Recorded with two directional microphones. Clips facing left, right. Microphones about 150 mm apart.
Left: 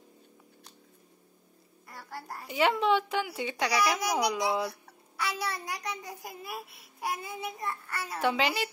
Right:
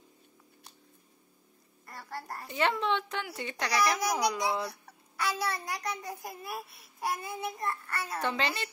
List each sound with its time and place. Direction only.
1.9 s a woman's voice: 5° left (ahead or behind)